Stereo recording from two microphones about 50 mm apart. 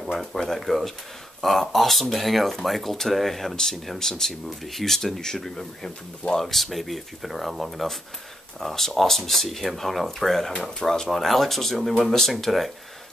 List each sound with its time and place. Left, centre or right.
0.1 s speech: centre
6.4 s speech: centre